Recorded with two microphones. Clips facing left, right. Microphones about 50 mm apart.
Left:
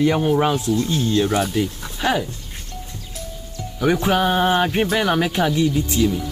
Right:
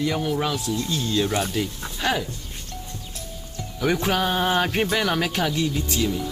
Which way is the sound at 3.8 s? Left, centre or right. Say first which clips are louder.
Left 4 dB; centre.